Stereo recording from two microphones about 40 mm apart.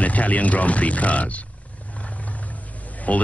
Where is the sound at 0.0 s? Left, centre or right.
Left.